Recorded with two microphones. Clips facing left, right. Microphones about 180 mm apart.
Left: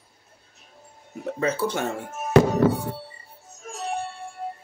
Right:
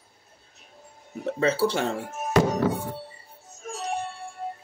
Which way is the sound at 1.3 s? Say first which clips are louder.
Right 2 dB; 30° right (ahead or behind).